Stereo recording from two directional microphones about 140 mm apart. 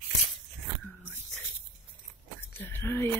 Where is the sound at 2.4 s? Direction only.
15° left (ahead or behind).